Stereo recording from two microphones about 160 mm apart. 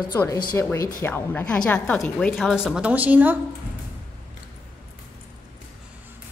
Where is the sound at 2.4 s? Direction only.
Centre (ahead or behind).